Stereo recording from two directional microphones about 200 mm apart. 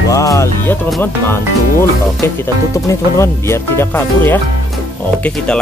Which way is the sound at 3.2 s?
10° left (ahead or behind).